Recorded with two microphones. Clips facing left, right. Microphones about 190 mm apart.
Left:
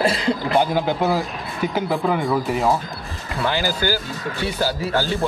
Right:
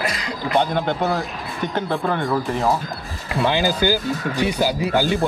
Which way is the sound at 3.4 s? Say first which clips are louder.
Right 3 dB; 20° right (ahead or behind).